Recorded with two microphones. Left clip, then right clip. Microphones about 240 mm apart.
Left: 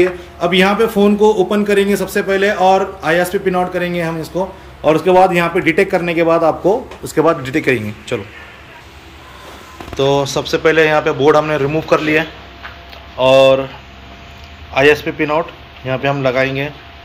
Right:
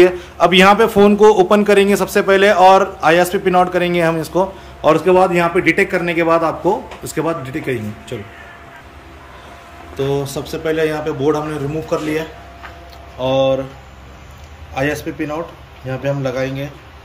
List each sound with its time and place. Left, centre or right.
0.0 s a man's voice: centre
10.1 s a man's voice: centre
14.7 s a man's voice: centre